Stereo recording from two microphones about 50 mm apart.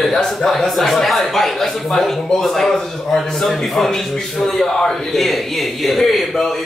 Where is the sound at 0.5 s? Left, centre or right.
Centre.